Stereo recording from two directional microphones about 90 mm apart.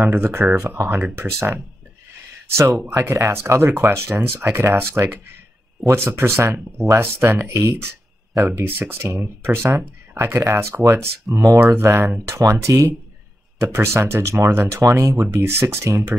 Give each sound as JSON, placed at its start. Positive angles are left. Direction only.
{"t": 0.0, "sound": "speech", "side_deg": -25}
{"t": 3.0, "sound": "speech", "side_deg": -25}